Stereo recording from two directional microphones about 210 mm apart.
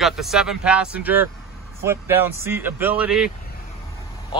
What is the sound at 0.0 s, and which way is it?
Speech, centre (ahead or behind).